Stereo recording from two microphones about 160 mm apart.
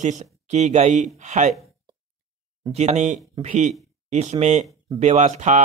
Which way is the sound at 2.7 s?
45° right (ahead or behind).